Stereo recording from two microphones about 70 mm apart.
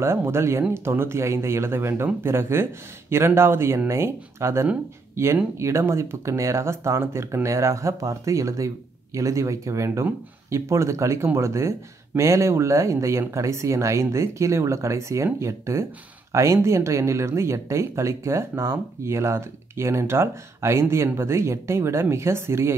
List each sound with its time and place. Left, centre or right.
0.0 s speech: right